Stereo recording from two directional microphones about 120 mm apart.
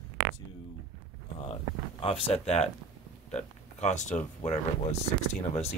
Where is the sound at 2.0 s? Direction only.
55° left (ahead or behind).